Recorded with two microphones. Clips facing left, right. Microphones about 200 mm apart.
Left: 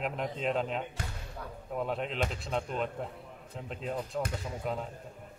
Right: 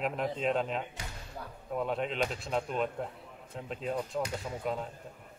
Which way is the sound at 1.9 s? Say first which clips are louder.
Right 1 dB; centre (ahead or behind).